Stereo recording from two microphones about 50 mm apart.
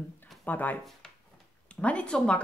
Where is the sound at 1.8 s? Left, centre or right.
Left.